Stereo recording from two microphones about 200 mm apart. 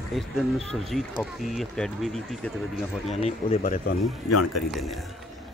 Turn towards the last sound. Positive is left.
turn(degrees=0)  # may be behind; listen again after turning